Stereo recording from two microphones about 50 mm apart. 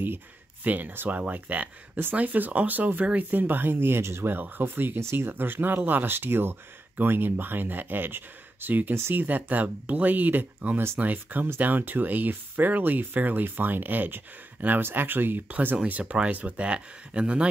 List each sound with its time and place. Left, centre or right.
0.7 s speech: right
16.0 s speech: right